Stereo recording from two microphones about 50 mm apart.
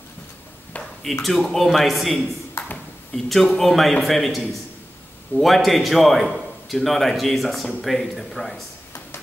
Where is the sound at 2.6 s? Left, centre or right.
Left.